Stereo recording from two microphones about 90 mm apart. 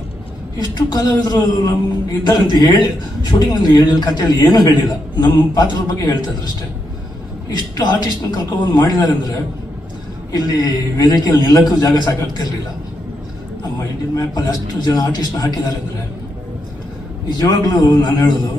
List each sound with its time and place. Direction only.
0.7 s a man's voice: 50° left (ahead or behind)
10.3 s a man's voice: 45° left (ahead or behind)
14.1 s a man's voice: 50° left (ahead or behind)
17.3 s a man's voice: 50° left (ahead or behind)